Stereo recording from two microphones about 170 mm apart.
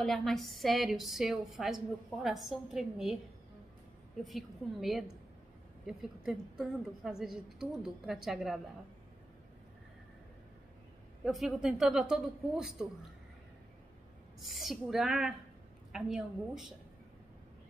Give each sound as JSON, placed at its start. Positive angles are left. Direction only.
{"t": 0.0, "sound": "a woman's voice", "side_deg": 0}
{"t": 4.2, "sound": "a woman's voice", "side_deg": 0}
{"t": 11.2, "sound": "a woman's voice", "side_deg": 0}
{"t": 14.4, "sound": "a woman's voice", "side_deg": 0}